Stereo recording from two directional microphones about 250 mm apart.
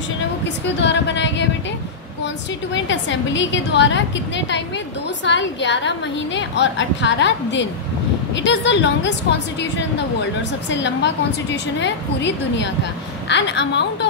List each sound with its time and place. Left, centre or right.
0.7 s a woman's voice: left
5.2 s a woman's voice: left